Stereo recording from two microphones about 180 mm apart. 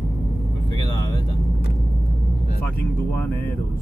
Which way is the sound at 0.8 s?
25° left (ahead or behind).